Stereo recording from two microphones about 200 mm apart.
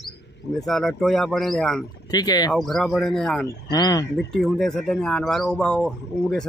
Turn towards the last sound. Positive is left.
turn(degrees=5)  # may be behind; listen again after turning